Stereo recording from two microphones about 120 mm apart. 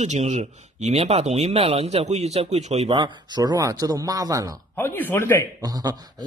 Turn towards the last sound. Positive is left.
turn(degrees=-30)  # may be behind; listen again after turning